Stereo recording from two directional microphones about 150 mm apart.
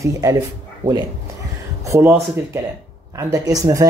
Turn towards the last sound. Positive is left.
turn(degrees=-25)  # may be behind; listen again after turning